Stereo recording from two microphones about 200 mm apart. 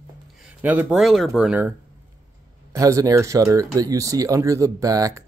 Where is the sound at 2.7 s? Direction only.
15° right (ahead or behind).